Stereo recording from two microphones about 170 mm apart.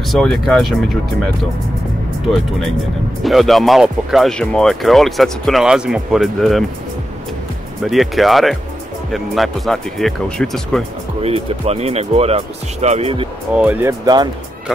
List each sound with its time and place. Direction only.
0.1 s speech: 5° left (ahead or behind)
3.3 s speech: centre (ahead or behind)
7.8 s speech: centre (ahead or behind)
11.2 s speech: 35° right (ahead or behind)
13.6 s speech: 10° right (ahead or behind)
14.0 s speech: 25° right (ahead or behind)